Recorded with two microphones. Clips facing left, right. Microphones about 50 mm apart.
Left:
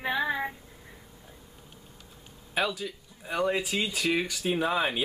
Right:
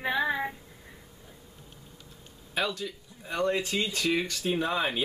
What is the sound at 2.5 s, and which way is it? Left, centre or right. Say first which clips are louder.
Speech: left 1 dB; centre.